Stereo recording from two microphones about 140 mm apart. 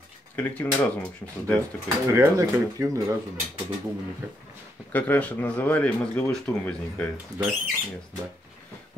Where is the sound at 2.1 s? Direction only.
20° right (ahead or behind).